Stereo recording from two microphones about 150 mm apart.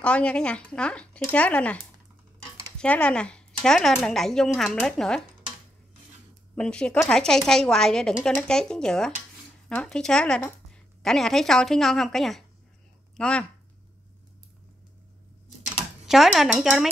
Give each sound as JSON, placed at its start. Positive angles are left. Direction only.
{"t": 0.0, "sound": "a woman's voice", "side_deg": 5}
{"t": 6.5, "sound": "a woman's voice", "side_deg": 5}
{"t": 16.1, "sound": "a woman's voice", "side_deg": 0}